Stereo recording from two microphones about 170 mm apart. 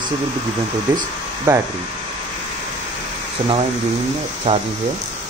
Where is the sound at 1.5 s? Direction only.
20° right (ahead or behind).